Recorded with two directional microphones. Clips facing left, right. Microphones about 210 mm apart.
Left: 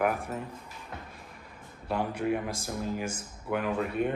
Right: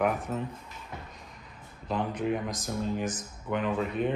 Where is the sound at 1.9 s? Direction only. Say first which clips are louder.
Even; 10° left (ahead or behind).